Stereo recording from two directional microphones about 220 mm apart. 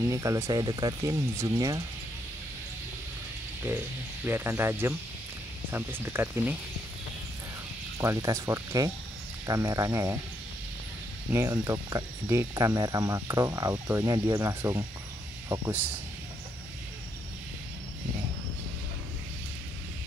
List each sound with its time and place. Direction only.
0.1 s speech: 15° right (ahead or behind)
4.3 s speech: 10° right (ahead or behind)
8.0 s speech: 15° right (ahead or behind)
11.3 s speech: 10° right (ahead or behind)